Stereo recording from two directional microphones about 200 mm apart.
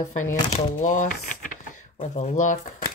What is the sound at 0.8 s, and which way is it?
Speech, 40° left (ahead or behind).